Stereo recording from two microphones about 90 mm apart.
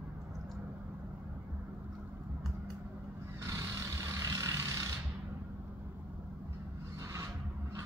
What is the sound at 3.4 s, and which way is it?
Vehicle, 35° right (ahead or behind).